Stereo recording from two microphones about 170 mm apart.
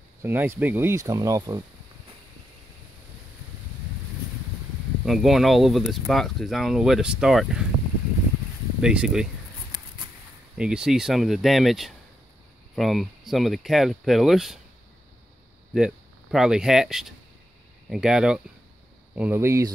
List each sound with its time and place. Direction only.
0.2 s speech: 15° right (ahead or behind)
5.0 s speech: centre (ahead or behind)
8.8 s speech: 5° right (ahead or behind)
10.6 s speech: 5° right (ahead or behind)
15.7 s speech: centre (ahead or behind)